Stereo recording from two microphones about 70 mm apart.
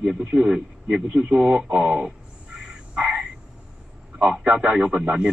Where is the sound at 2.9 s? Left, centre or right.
Centre.